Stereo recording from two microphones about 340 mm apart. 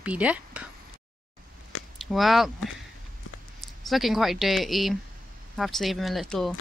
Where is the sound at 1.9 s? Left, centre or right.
Centre.